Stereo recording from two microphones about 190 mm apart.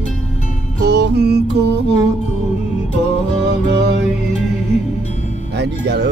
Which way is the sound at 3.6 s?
65° right (ahead or behind).